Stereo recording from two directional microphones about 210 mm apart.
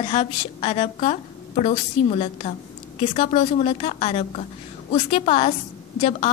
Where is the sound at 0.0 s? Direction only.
30° left (ahead or behind).